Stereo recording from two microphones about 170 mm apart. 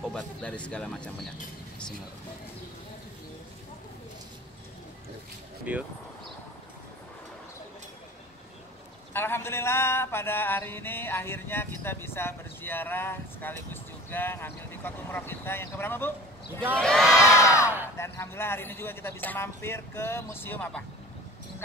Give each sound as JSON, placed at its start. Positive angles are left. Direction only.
{"t": 0.0, "sound": "mantra", "side_deg": 5}
{"t": 5.7, "sound": "speech", "side_deg": -10}
{"t": 9.1, "sound": "mantra", "side_deg": 15}
{"t": 16.7, "sound": "speech", "side_deg": 5}
{"t": 17.4, "sound": "mantra", "side_deg": 15}